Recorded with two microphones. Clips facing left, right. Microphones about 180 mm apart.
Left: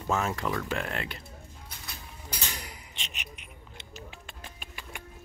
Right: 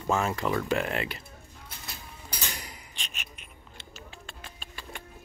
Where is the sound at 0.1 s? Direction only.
Centre (ahead or behind).